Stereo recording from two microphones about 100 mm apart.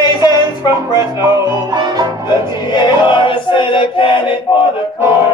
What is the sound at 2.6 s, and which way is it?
Music, 50° left (ahead or behind).